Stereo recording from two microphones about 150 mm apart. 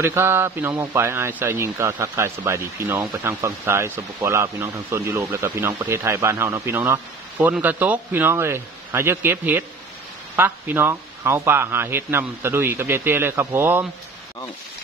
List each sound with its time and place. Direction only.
0.0 s a man's voice: 15° right (ahead or behind)